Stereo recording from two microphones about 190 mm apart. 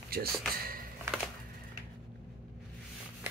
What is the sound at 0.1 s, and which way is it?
Speech, 55° right (ahead or behind).